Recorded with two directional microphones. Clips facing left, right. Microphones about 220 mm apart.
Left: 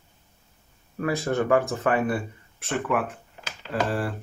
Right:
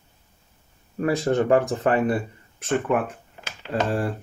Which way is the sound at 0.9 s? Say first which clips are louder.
Right 4 dB; 35° right (ahead or behind).